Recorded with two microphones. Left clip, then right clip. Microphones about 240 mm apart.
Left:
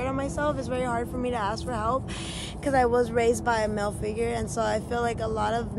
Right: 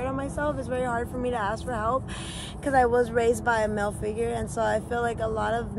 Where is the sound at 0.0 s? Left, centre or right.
Centre.